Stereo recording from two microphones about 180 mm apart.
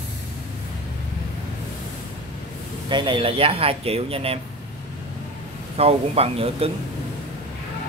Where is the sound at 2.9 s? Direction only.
25° right (ahead or behind).